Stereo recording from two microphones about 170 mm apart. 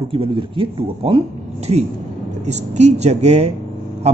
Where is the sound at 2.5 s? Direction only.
40° right (ahead or behind).